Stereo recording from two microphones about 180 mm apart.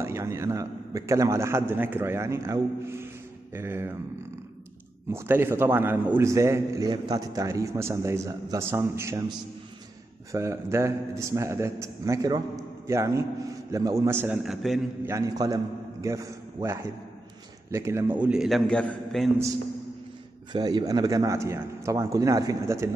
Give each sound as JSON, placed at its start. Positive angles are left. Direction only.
{"t": 0.0, "sound": "a man's voice", "side_deg": -15}
{"t": 5.1, "sound": "a man's voice", "side_deg": -15}
{"t": 10.3, "sound": "a man's voice", "side_deg": -15}
{"t": 15.0, "sound": "a man's voice", "side_deg": -20}
{"t": 20.5, "sound": "a man's voice", "side_deg": -25}